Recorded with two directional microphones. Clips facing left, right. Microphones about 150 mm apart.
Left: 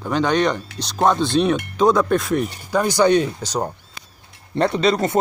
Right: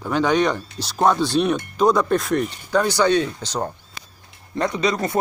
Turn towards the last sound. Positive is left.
turn(degrees=30)  # may be behind; listen again after turning